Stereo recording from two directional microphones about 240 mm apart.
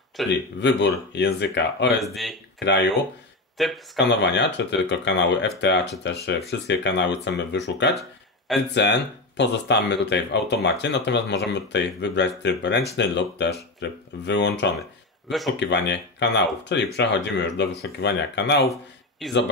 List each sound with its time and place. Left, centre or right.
0.3 s speech: left
3.5 s speech: centre
4.1 s speech: left
8.5 s speech: centre
9.4 s speech: left
18.7 s speech: centre